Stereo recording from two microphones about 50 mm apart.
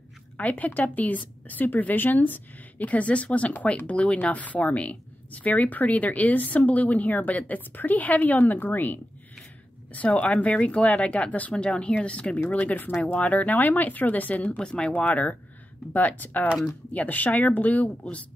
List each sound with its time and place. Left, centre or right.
0.4 s a woman's voice: left
9.9 s speech: left
12.5 s a woman's voice: left
14.6 s speech: centre
15.0 s a woman's voice: left